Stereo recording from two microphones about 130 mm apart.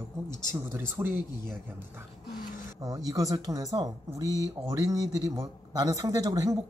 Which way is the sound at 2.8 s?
30° right (ahead or behind).